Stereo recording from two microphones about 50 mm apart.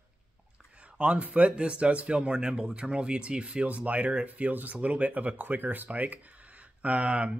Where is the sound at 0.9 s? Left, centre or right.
Right.